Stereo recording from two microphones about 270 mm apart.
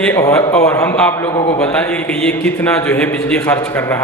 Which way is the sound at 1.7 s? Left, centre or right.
Centre.